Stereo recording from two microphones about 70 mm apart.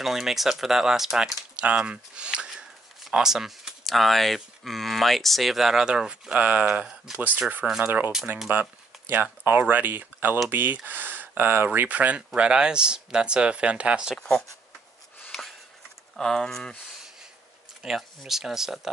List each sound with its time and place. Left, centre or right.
0.0 s speech: centre
6.7 s speech: centre
7.3 s speech: right
7.6 s speech: centre
8.5 s speech: right
14.1 s speech: centre
16.2 s speech: centre
17.8 s speech: centre